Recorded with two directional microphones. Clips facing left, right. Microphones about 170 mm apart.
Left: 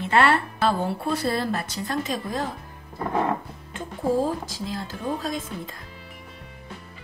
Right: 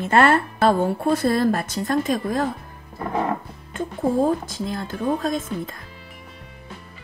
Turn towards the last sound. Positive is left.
turn(degrees=-50)  # may be behind; listen again after turning